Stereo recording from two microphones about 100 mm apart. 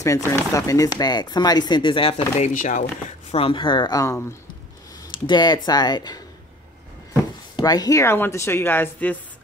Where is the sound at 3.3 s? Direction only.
65° left (ahead or behind).